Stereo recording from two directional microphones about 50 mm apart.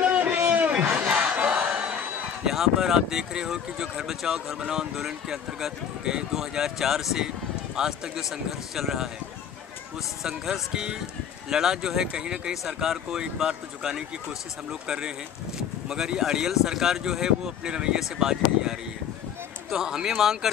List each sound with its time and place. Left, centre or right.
0.0 s a sound: right
0.9 s battle cry: right
2.4 s speech: centre
10.2 s speech: centre